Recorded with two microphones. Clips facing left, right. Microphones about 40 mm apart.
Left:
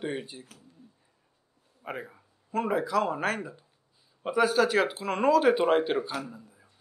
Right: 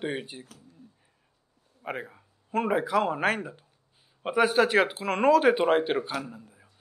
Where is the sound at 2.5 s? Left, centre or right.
Right.